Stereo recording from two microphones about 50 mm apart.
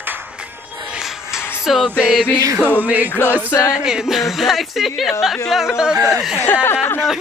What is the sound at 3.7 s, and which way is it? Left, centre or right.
Speech, centre.